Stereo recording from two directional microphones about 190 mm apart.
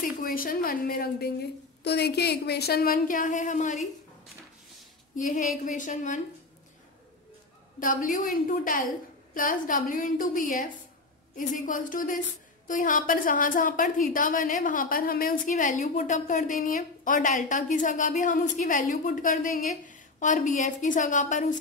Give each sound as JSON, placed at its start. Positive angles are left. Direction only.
{"t": 0.2, "sound": "a woman's voice", "side_deg": 50}
{"t": 5.1, "sound": "a woman's voice", "side_deg": 40}
{"t": 7.8, "sound": "a woman's voice", "side_deg": 45}